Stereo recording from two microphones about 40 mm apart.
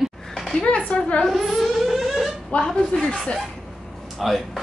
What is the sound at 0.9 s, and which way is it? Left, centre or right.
Speech, left.